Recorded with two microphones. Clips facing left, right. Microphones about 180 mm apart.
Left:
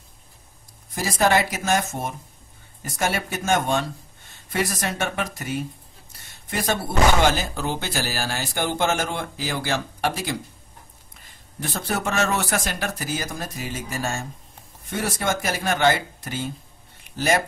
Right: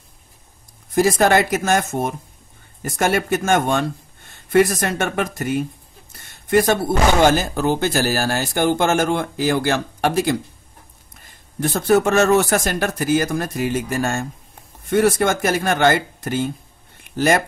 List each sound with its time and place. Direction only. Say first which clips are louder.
0.9 s speech: right 6 dB; 50° right (ahead or behind)
11.6 s speech: right 11 dB; 45° right (ahead or behind)
17.0 s a sound: right 5 dB; 55° right (ahead or behind)